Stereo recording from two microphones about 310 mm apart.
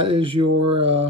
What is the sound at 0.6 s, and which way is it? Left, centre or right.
Speech, centre.